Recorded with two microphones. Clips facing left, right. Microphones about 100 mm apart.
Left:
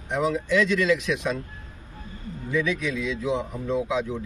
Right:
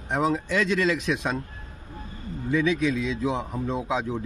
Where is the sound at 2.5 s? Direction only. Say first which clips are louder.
Right 3 dB; 35° right (ahead or behind).